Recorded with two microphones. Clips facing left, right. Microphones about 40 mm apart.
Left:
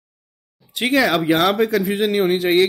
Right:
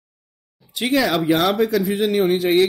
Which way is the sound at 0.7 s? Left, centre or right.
Left.